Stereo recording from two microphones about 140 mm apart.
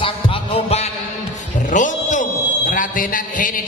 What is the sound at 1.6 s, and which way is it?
Speech, 65° left (ahead or behind).